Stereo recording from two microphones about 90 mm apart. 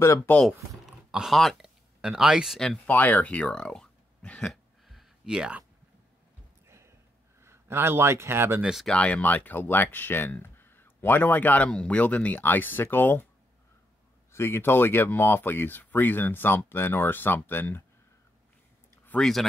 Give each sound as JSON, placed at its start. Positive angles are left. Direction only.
{"t": 0.3, "sound": "speech", "side_deg": 10}
{"t": 0.8, "sound": "a sound", "side_deg": -5}
{"t": 2.0, "sound": "speech", "side_deg": -5}
{"t": 2.9, "sound": "speech", "side_deg": 20}
{"t": 4.8, "sound": "a sound", "side_deg": -5}
{"t": 6.7, "sound": "a sound", "side_deg": -30}
{"t": 7.4, "sound": "a man's voice", "side_deg": -30}
{"t": 8.8, "sound": "speech", "side_deg": 15}
{"t": 14.3, "sound": "speech", "side_deg": 25}
{"t": 19.1, "sound": "speech", "side_deg": 15}